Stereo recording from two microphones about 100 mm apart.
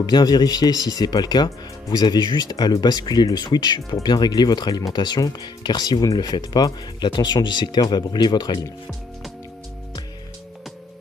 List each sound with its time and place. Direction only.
0.0 s speech: 40° left (ahead or behind)